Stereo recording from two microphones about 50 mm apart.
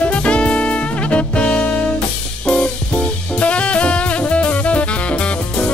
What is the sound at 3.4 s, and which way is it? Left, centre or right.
Saxophone, left.